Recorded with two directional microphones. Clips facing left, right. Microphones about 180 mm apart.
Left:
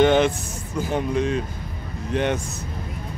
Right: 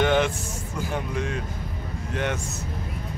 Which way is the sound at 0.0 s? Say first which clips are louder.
Left 5 dB; 25° left (ahead or behind).